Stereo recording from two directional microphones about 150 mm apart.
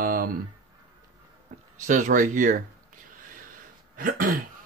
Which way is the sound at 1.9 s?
60° right (ahead or behind).